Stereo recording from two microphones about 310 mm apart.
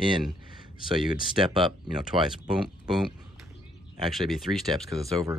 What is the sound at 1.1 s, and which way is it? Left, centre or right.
Speech, centre.